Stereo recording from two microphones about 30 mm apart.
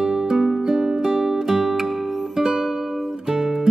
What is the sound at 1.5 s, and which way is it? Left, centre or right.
Music, centre.